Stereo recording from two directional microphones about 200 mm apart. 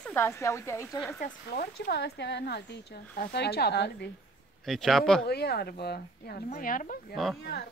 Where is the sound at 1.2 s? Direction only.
50° left (ahead or behind).